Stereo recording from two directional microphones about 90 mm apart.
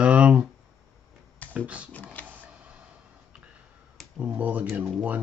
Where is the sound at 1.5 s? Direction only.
15° right (ahead or behind).